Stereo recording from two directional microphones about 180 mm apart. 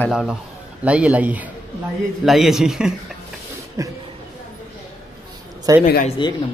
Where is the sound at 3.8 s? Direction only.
15° right (ahead or behind).